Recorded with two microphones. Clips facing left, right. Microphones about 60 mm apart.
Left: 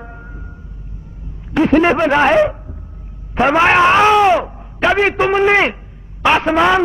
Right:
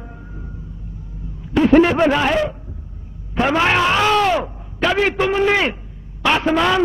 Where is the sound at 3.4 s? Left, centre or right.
Left.